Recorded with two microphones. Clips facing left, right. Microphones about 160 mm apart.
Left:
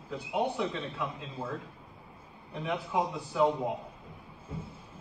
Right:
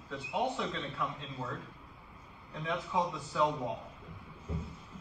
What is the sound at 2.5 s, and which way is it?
Speech, 15° left (ahead or behind).